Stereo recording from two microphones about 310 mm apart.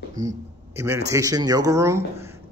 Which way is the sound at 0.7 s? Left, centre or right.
Centre.